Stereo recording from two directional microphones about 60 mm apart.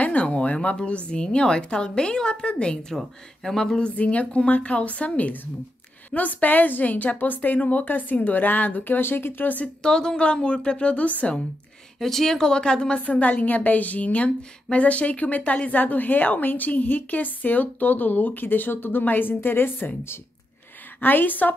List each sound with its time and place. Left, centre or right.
0.0 s a woman's voice: left
9.8 s a woman's voice: centre
12.0 s speech: centre
13.0 s a woman's voice: left